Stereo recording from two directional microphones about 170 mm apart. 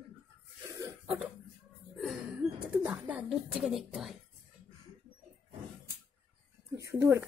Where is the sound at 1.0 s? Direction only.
5° right (ahead or behind).